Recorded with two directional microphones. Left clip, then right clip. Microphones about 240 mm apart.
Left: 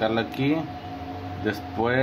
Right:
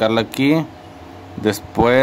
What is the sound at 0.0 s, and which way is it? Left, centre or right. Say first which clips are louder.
Speech: right 8 dB; right.